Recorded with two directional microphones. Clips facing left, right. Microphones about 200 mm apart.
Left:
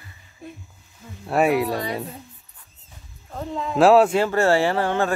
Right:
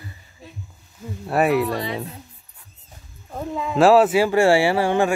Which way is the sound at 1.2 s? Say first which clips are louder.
Even; centre (ahead or behind).